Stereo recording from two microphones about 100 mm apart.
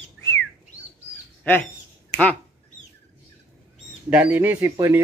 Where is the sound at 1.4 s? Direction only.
20° left (ahead or behind).